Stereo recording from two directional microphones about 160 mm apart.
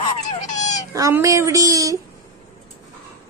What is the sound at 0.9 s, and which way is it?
Speech, 20° right (ahead or behind).